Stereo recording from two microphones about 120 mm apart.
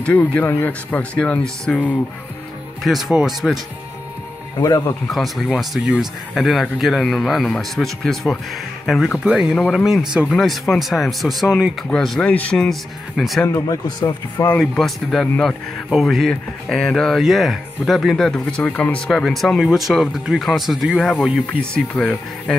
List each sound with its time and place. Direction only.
0.0 s speech: 10° left (ahead or behind)
2.8 s speech: centre (ahead or behind)
4.6 s speech: 30° left (ahead or behind)
5.1 s speech: centre (ahead or behind)
13.5 s speech: 25° left (ahead or behind)
14.6 s speech: centre (ahead or behind)